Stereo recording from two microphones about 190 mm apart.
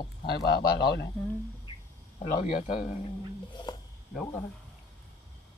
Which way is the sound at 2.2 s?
45° left (ahead or behind).